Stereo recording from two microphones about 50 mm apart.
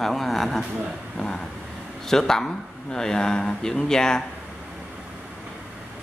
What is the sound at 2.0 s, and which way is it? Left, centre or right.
Speech, centre.